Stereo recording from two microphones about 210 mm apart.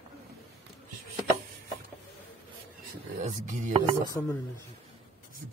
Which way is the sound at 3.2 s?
35° right (ahead or behind).